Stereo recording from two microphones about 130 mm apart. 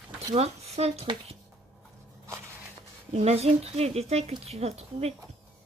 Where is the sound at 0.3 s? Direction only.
55° right (ahead or behind).